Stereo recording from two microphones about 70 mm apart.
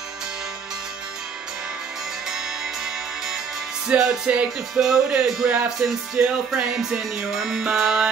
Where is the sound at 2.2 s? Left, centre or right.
Centre.